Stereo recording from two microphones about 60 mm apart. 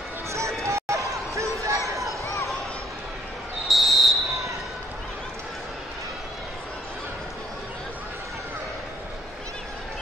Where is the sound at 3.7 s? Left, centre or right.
Centre.